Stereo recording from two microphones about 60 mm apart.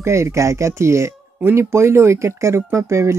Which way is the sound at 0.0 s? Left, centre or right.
Right.